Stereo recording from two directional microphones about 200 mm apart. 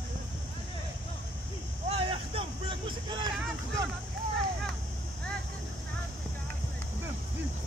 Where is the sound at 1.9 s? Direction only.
30° right (ahead or behind).